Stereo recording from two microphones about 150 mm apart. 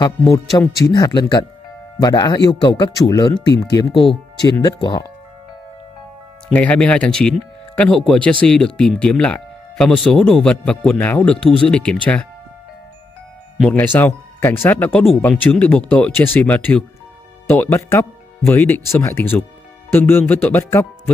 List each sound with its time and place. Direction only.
0.0 s speech: 25° left (ahead or behind)
6.5 s speech: 10° left (ahead or behind)
13.7 s speech: 10° left (ahead or behind)